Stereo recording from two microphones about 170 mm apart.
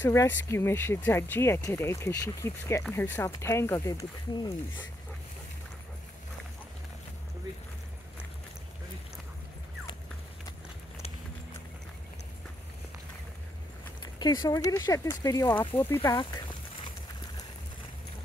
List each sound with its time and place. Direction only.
0.0 s speech: 15° left (ahead or behind)
14.2 s speech: 25° left (ahead or behind)